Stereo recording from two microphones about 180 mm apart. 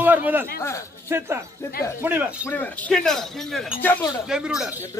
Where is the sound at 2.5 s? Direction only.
10° left (ahead or behind).